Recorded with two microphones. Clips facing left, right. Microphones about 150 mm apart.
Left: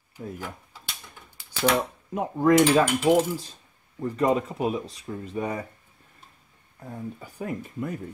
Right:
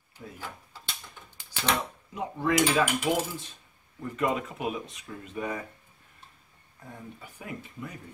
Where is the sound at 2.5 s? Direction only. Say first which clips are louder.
Left 3 dB; 30° left (ahead or behind).